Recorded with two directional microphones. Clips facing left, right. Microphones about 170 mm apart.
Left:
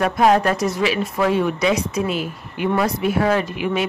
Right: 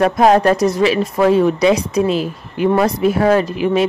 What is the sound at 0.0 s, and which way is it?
Speech, 35° right (ahead or behind).